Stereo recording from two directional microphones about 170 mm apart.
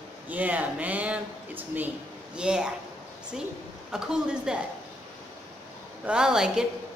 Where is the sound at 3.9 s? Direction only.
5° right (ahead or behind).